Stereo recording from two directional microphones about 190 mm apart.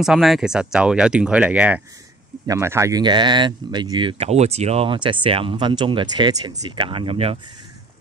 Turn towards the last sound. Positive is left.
turn(degrees=-30)  # may be behind; listen again after turning